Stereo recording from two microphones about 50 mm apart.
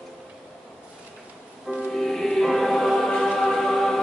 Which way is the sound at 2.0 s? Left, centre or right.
Centre.